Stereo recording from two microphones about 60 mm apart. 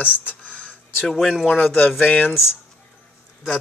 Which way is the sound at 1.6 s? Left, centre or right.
Left.